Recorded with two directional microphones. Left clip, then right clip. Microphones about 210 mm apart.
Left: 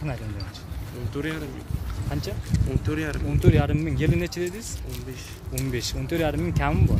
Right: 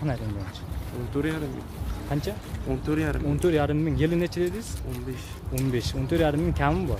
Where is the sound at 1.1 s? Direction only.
40° right (ahead or behind).